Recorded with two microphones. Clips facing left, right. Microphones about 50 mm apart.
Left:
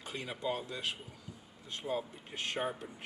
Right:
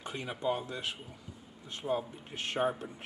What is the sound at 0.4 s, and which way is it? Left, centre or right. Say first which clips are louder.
Speech: right 4 dB; centre.